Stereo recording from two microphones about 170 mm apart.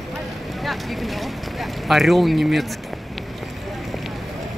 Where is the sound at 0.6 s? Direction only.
Centre (ahead or behind).